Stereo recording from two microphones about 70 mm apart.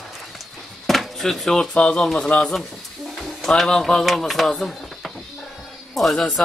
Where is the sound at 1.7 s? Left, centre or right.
Centre.